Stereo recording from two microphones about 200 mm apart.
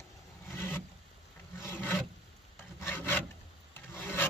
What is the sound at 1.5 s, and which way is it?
Rub, 10° left (ahead or behind).